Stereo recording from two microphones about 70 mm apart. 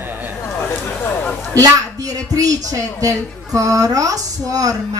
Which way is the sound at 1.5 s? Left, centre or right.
Right.